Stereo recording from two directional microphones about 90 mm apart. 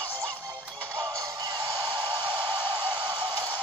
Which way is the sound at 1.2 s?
45° right (ahead or behind).